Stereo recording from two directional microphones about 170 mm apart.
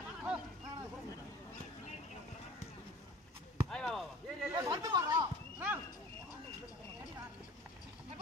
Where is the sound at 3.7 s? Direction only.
5° left (ahead or behind).